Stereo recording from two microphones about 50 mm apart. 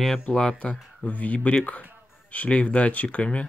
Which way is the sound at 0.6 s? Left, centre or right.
Left.